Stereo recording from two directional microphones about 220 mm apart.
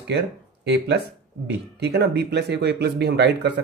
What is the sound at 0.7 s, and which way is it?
Speech, 50° right (ahead or behind).